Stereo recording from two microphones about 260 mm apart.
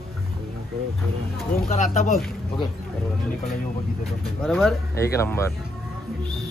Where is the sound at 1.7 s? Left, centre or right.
Left.